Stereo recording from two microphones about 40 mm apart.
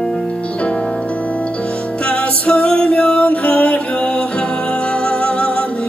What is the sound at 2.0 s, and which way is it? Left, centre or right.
Music, left.